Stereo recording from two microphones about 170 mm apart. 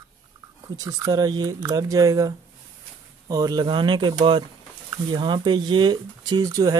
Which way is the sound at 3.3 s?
25° right (ahead or behind).